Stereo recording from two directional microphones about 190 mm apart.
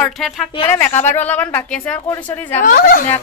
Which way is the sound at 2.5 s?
45° left (ahead or behind).